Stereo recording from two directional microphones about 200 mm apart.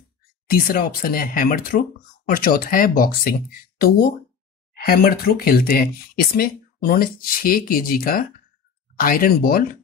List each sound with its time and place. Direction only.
0.5 s speech: 50° left (ahead or behind)
4.8 s speech: 50° left (ahead or behind)